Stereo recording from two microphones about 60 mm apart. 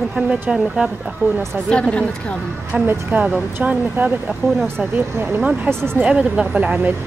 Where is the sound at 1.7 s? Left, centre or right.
Centre.